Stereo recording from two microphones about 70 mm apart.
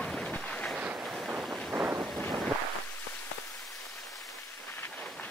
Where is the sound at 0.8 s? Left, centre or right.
Centre.